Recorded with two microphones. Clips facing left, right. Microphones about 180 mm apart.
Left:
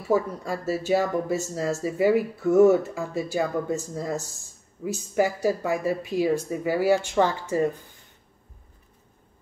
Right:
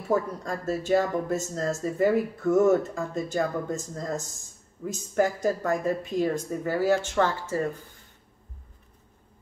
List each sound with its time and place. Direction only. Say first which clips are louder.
0.1 s speech: left 2 dB; 5° left (ahead or behind)